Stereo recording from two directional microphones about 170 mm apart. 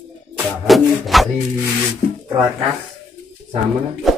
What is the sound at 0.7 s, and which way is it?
Music, centre (ahead or behind).